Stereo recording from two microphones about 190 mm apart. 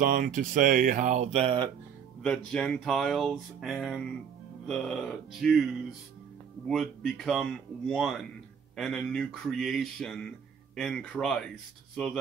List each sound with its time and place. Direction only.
0.0 s speech: 45° right (ahead or behind)
2.2 s speech: 5° left (ahead or behind)